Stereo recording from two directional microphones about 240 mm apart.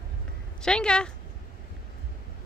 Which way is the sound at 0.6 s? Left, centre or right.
Centre.